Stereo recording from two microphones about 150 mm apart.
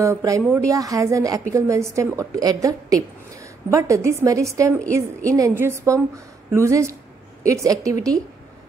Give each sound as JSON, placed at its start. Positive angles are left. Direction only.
{"t": 0.0, "sound": "a woman's voice", "side_deg": -20}